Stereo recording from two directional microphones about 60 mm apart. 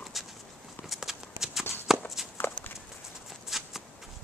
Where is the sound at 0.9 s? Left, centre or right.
Centre.